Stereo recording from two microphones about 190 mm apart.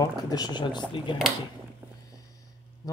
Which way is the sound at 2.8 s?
15° left (ahead or behind).